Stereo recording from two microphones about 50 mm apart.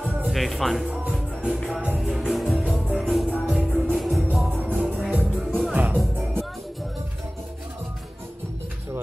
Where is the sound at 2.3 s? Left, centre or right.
Centre.